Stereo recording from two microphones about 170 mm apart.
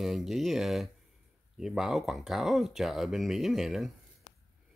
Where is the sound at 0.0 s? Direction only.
Centre (ahead or behind).